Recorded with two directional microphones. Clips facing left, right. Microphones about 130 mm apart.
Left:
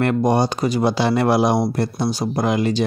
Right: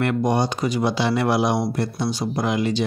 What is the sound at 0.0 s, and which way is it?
Speech, 35° left (ahead or behind).